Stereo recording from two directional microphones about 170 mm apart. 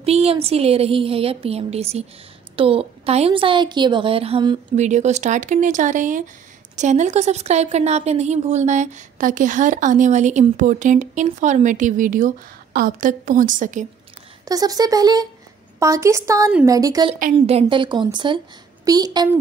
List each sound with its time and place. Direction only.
0.0 s a woman's voice: 35° right (ahead or behind)
4.7 s a woman's voice: 45° right (ahead or behind)
14.4 s a woman's voice: 20° right (ahead or behind)
17.5 s a woman's voice: 35° right (ahead or behind)